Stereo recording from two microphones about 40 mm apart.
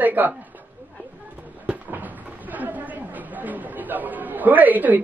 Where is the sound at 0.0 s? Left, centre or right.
Right.